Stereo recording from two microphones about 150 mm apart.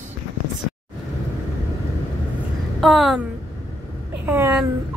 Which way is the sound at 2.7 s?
Centre (ahead or behind).